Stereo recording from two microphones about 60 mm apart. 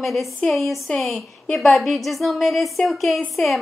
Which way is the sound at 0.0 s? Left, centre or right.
Centre.